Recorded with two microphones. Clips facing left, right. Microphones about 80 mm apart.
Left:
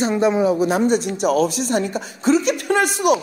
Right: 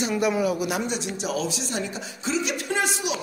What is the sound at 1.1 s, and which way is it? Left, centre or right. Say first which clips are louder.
Speech: left 10 dB; left.